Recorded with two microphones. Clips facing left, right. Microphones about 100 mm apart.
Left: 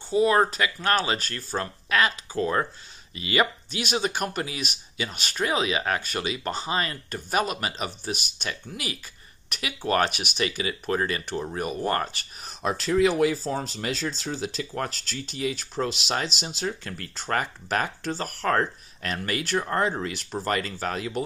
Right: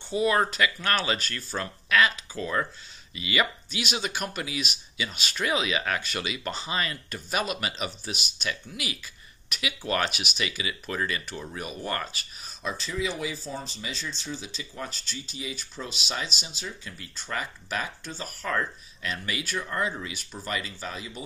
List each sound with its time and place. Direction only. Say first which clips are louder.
0.1 s speech: left 4 dB; 30° left (ahead or behind)
5.4 s speech: left 2 dB; 35° left (ahead or behind); by 8.5 s 50° left (ahead or behind)
8.5 s speech: left 1 dB; 40° left (ahead or behind); by 10.4 s 55° left (ahead or behind)
10.4 s speech: left 6 dB; 40° left (ahead or behind)
12.6 s speech: left 9 dB; 75° left (ahead or behind)
13.4 s speech: left 7 dB; 90° left; by 16.4 s 70° left (ahead or behind)
16.6 s speech: left 8 dB; 60° left (ahead or behind); by 17.3 s 75° left (ahead or behind)
17.3 s speech: left 6 dB; 55° left (ahead or behind)
18.1 s speech: left 6 dB; 70° left (ahead or behind)
19.0 s speech: left 4 dB; 50° left (ahead or behind); by 21.2 s 65° left (ahead or behind)